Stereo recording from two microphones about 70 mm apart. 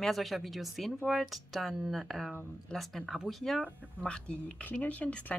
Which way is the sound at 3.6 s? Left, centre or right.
Centre.